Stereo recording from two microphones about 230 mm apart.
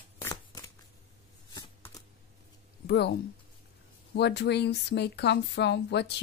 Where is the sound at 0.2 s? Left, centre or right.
Centre.